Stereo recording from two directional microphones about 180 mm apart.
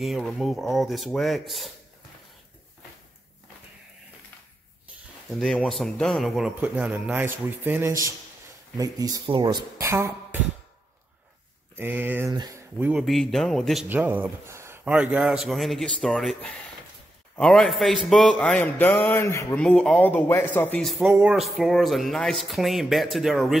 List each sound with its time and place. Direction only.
0.0 s a man's voice: centre (ahead or behind)
5.3 s a man's voice: 5° left (ahead or behind)
8.7 s speech: 20° right (ahead or behind)
11.7 s speech: 10° right (ahead or behind)
12.7 s speech: 10° right (ahead or behind)
13.0 s a man's voice: centre (ahead or behind)
13.8 s a man's voice: 10° right (ahead or behind)